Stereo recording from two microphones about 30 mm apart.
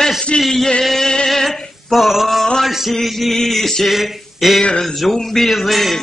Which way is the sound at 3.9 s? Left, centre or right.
Centre.